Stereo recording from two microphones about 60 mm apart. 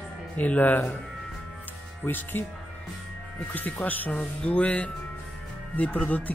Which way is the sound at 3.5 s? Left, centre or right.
Left.